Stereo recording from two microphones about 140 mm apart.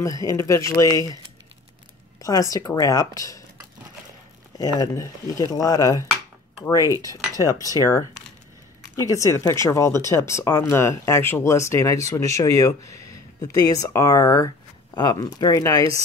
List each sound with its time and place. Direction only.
0.0 s speech: 25° left (ahead or behind)
2.5 s speech: 25° left (ahead or behind)
4.7 s speech: 25° left (ahead or behind)
9.0 s speech: 25° left (ahead or behind)